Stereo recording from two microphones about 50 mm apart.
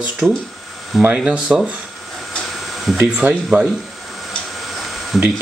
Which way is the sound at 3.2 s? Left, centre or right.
Right.